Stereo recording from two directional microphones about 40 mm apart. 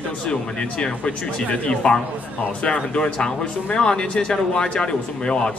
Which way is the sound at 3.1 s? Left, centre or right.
Centre.